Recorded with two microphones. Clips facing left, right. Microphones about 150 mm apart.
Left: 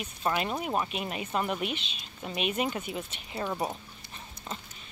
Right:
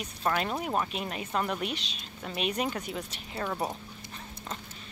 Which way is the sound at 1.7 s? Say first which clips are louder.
Left 1 dB; 35° right (ahead or behind).